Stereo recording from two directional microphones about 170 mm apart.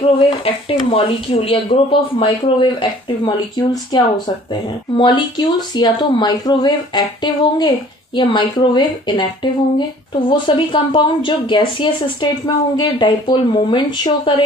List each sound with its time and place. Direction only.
0.2 s speech: 35° left (ahead or behind)